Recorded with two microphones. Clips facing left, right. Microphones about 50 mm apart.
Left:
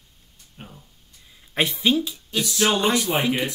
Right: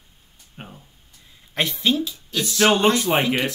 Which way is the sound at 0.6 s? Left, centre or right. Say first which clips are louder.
Right 3 dB; right.